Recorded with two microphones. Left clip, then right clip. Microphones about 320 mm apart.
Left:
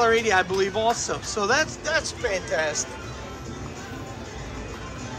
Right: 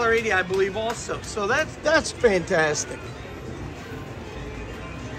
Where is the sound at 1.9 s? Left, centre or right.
Centre.